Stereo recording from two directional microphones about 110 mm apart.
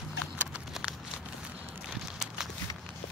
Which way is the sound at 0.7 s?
5° right (ahead or behind).